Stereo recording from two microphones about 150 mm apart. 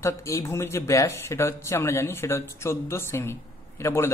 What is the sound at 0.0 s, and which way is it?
Speech, 20° left (ahead or behind).